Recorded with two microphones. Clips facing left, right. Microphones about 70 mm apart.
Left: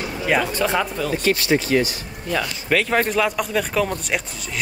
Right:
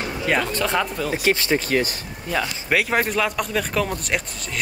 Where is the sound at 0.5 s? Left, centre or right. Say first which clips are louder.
Left 1 dB; centre.